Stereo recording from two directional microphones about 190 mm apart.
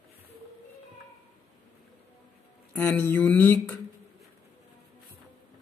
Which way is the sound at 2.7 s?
10° left (ahead or behind).